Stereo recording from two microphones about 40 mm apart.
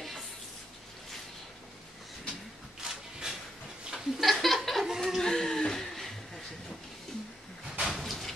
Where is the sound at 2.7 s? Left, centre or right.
Centre.